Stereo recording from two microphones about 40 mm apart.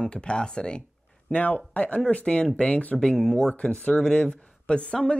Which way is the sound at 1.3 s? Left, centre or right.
Left.